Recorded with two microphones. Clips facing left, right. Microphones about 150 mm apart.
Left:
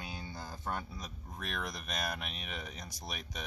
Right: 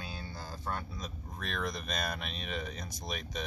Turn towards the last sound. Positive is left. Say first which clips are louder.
# right 5 dB
turn(degrees=5)  # may be behind; listen again after turning